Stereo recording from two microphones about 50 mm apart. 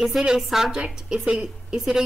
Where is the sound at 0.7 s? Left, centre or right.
Centre.